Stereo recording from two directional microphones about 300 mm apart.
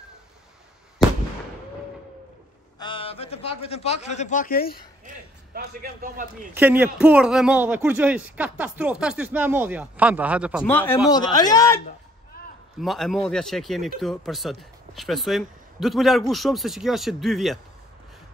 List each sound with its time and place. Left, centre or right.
2.8 s a man's voice: centre
5.0 s a sound: right
6.5 s speech: centre
10.6 s speech: centre
12.8 s speech: centre